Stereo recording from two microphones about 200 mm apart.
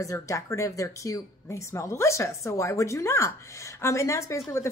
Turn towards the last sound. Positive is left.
turn(degrees=15)  # may be behind; listen again after turning